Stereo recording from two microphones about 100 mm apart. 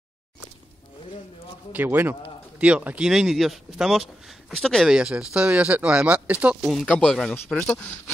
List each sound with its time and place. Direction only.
1.7 s speech: 20° right (ahead or behind)
3.1 s speech: 5° right (ahead or behind)
4.9 s speech: 10° right (ahead or behind)
6.6 s speech: centre (ahead or behind)